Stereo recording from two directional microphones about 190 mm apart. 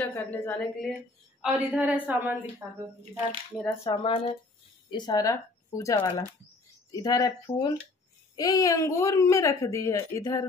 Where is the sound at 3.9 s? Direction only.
25° left (ahead or behind).